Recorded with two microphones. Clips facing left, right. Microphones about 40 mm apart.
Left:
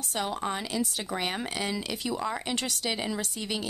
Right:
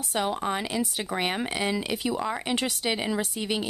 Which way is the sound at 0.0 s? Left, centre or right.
Centre.